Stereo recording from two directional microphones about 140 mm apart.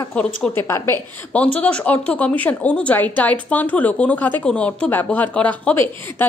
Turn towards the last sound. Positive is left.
turn(degrees=15)  # may be behind; listen again after turning